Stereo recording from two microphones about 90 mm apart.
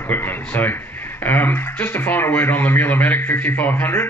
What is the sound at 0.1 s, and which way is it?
Speech, 25° left (ahead or behind).